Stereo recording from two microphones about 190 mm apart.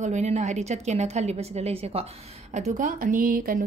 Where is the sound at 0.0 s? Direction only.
40° right (ahead or behind).